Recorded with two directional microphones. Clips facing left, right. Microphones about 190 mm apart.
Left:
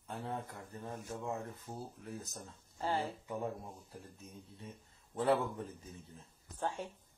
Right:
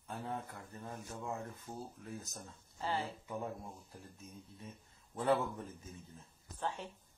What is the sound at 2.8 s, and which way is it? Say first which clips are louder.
Speech: left 2 dB; 45° left (ahead or behind).